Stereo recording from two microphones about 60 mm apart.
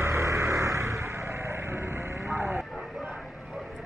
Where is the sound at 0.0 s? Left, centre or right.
Right.